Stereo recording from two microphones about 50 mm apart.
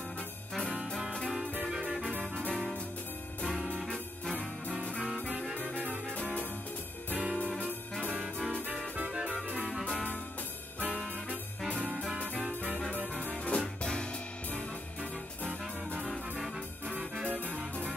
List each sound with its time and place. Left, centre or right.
1.7 s music: centre
3.5 s music: centre
7.3 s music: left
13.2 s music: left